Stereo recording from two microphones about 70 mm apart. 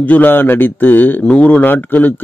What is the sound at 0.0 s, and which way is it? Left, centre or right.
A man's voice, left.